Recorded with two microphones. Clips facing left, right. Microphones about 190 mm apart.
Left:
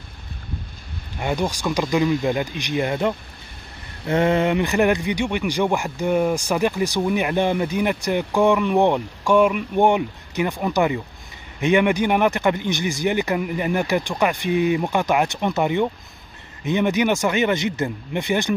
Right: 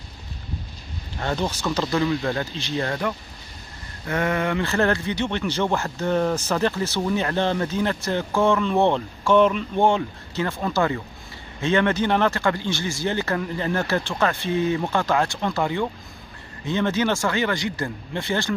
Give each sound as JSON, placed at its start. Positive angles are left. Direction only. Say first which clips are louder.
{"t": 1.2, "sound": "speech", "louder": "left 2 dB", "side_deg": 15}